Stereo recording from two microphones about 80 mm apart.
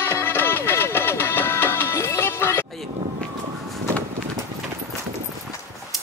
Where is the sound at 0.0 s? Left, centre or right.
Left.